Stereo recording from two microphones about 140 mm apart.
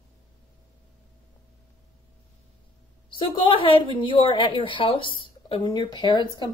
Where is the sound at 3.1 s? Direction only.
35° left (ahead or behind).